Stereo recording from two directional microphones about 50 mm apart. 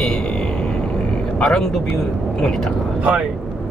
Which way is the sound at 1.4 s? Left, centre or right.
Centre.